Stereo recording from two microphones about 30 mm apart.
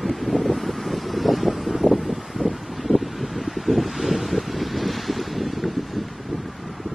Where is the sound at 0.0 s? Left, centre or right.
Centre.